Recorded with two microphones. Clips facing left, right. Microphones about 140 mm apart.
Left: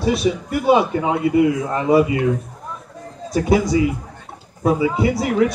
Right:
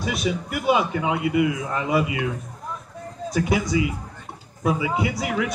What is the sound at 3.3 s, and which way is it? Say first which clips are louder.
Speech: left 6 dB; 35° left (ahead or behind).